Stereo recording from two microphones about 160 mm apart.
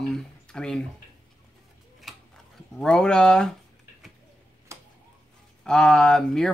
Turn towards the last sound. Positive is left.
turn(degrees=5)  # may be behind; listen again after turning